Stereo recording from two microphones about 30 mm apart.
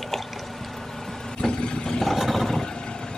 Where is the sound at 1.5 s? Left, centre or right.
Left.